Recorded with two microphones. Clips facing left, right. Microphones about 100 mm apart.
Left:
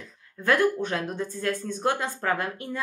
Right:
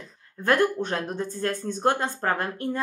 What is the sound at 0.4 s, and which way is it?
Speech, 30° right (ahead or behind).